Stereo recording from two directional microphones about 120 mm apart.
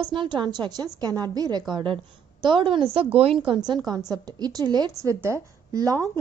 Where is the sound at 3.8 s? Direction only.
30° right (ahead or behind).